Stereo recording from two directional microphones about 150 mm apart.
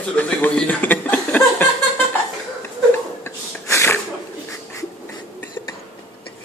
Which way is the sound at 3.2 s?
20° left (ahead or behind).